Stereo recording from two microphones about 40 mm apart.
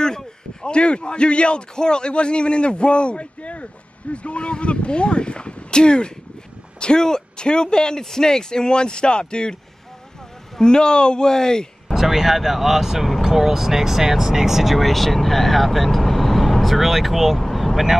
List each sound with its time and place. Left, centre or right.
0.0 s a man's voice: centre
10.6 s speech: left
11.9 s speech: centre
17.4 s vehicle: centre